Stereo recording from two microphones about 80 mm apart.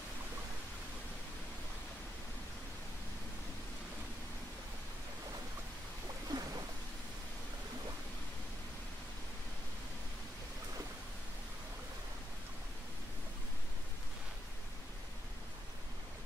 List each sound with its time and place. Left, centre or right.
6.3 s boat: right